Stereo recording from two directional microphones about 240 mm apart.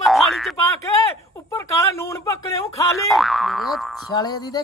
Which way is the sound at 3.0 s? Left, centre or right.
Centre.